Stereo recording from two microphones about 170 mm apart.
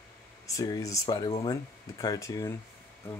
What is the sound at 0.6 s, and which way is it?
Speech, 20° left (ahead or behind).